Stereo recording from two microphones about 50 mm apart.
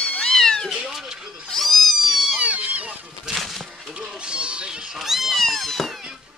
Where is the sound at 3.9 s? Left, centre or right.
Centre.